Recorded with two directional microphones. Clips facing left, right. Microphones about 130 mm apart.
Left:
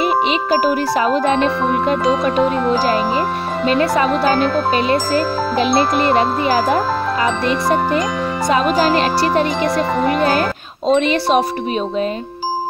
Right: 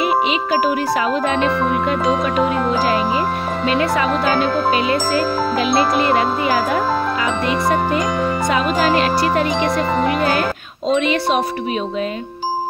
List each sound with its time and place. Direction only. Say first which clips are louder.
0.0 s speech: left 1 dB; 40° left (ahead or behind)
1.1 s jingle: left 2 dB; 30° left (ahead or behind)
3.7 s jingle: left 3 dB; 35° left (ahead or behind)
6.1 s speech: left 2 dB; 30° left (ahead or behind)
8.7 s speech: left 1 dB; 30° left (ahead or behind)
10.9 s jingle: left 2 dB; 35° left (ahead or behind)